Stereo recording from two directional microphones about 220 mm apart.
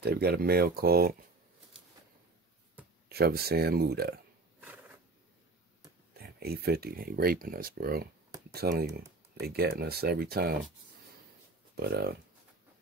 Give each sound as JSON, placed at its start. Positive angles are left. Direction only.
{"t": 0.0, "sound": "speech", "side_deg": -45}
{"t": 3.1, "sound": "speech", "side_deg": -45}
{"t": 4.6, "sound": "a sound", "side_deg": -5}
{"t": 6.1, "sound": "speech", "side_deg": -45}
{"t": 11.7, "sound": "speech", "side_deg": -45}